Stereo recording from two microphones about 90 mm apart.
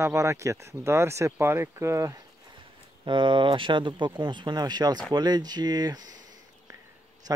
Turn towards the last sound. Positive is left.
turn(degrees=-50)  # may be behind; listen again after turning